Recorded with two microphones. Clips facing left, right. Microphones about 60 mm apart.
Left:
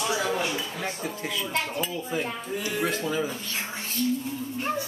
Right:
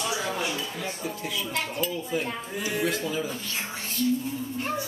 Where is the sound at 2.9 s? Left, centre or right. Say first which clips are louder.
Left 1 dB; left.